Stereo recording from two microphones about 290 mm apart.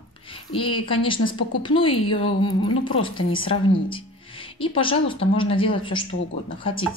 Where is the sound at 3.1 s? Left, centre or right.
Centre.